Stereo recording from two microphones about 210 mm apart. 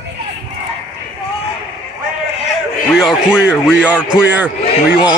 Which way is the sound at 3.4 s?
5° right (ahead or behind).